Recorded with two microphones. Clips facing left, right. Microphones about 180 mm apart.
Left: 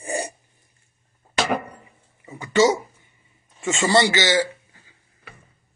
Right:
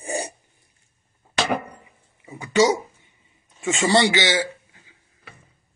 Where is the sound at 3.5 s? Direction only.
Centre (ahead or behind).